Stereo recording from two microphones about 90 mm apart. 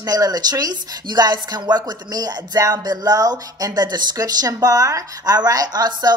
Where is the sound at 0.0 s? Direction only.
45° right (ahead or behind).